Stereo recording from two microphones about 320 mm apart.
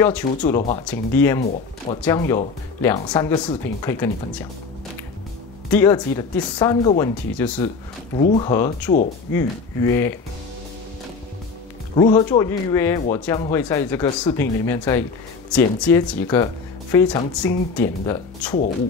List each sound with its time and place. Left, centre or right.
0.4 s speech: centre
0.8 s speech: centre
5.7 s speech: centre
11.9 s speech: centre